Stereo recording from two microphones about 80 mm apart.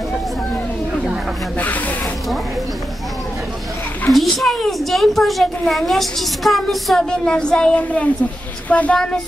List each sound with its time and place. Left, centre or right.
1.6 s speech: centre
4.1 s a child's voice: centre